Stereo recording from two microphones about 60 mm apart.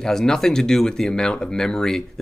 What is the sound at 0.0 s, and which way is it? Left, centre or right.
Speech, centre.